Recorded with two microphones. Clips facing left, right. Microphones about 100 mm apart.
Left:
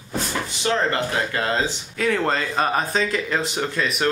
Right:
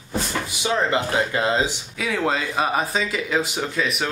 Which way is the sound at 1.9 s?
5° right (ahead or behind).